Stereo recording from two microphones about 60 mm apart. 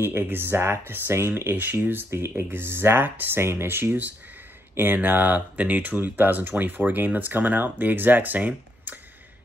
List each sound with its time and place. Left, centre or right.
0.0 s speech: right